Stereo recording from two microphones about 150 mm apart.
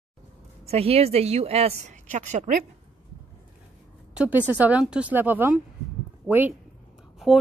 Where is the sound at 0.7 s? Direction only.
40° right (ahead or behind); by 2.6 s 55° right (ahead or behind).